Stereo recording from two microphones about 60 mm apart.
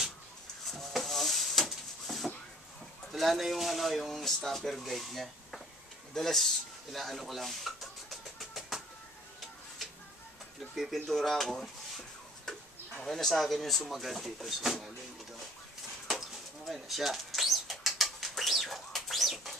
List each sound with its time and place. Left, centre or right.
0.7 s a sound: centre
3.1 s speech: centre
6.1 s a sound: centre
10.7 s speech: centre
13.0 s speech: centre
16.1 s bird: centre